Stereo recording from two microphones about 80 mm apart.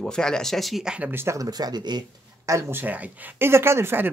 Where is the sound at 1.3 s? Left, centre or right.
Right.